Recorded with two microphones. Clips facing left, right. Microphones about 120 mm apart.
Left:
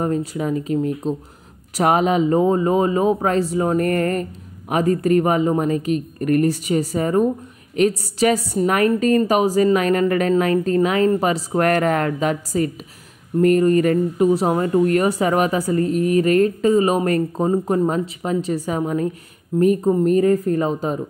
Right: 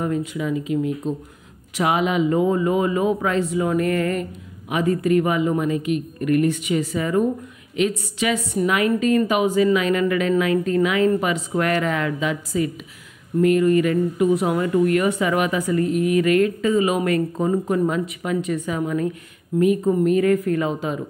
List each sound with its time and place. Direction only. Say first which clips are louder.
0.0 s a woman's voice: left 2 dB; 35° left (ahead or behind)